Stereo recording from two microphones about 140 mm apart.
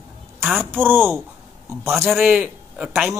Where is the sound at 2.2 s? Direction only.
5° right (ahead or behind).